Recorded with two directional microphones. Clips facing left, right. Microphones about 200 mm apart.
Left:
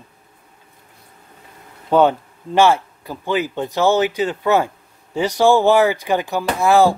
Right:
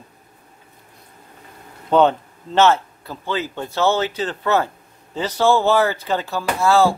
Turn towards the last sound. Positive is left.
turn(degrees=15)  # may be behind; listen again after turning